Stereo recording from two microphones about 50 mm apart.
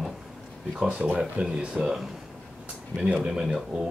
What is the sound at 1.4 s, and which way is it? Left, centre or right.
Speech, centre.